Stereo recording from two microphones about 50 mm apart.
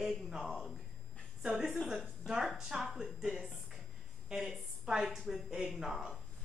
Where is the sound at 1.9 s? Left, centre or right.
Centre.